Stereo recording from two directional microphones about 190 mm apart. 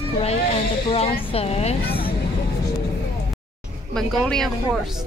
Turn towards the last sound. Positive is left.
turn(degrees=5)  # may be behind; listen again after turning